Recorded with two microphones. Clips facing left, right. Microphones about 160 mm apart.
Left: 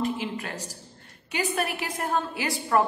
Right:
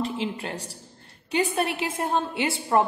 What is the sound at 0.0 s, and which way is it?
A woman's voice, 30° right (ahead or behind).